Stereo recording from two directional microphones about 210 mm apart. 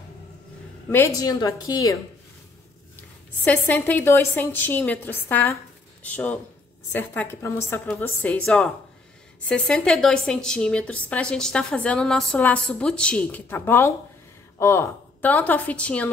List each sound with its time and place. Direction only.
0.8 s a woman's voice: 10° left (ahead or behind)
3.4 s a woman's voice: 10° left (ahead or behind)